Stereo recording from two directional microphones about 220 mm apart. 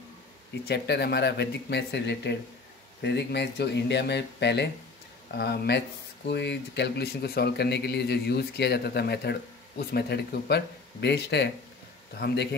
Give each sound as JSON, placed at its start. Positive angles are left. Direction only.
{"t": 0.7, "sound": "speech", "side_deg": 50}